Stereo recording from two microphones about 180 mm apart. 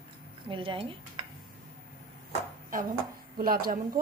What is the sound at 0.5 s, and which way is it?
Speech, 30° right (ahead or behind).